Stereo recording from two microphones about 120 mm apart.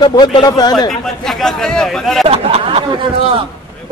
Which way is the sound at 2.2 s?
55° right (ahead or behind).